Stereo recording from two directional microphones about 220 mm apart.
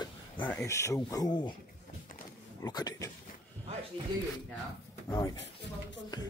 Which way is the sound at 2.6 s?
15° left (ahead or behind).